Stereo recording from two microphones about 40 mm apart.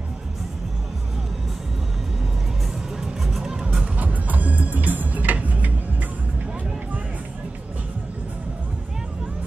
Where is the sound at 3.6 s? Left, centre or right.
Right.